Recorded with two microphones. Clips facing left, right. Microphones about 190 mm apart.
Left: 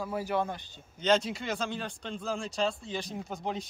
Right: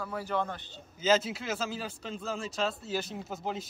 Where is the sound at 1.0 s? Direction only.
5° right (ahead or behind).